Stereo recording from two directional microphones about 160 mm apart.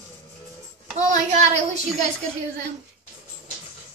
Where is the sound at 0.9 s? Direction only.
45° right (ahead or behind).